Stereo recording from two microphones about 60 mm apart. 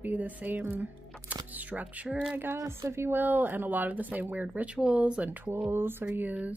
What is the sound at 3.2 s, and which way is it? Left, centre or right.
A woman's voice, right.